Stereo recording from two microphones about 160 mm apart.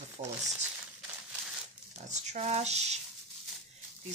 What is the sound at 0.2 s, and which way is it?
Speech, 40° right (ahead or behind).